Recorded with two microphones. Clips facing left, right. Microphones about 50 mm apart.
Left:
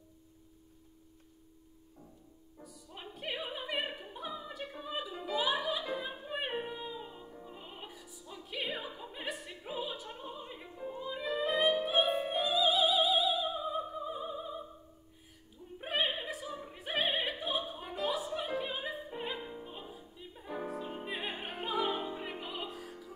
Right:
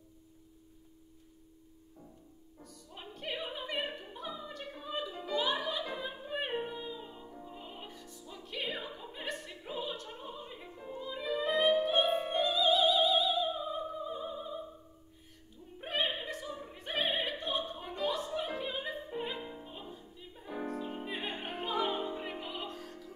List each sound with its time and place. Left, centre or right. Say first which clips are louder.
2.0 s music: right 1 dB; right
2.6 s opera: left 1 dB; centre
15.8 s opera: left 1 dB; centre